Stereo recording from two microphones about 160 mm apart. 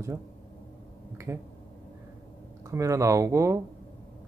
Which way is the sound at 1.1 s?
15° right (ahead or behind).